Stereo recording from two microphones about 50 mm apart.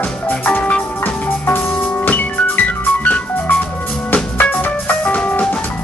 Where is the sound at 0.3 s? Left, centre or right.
Left.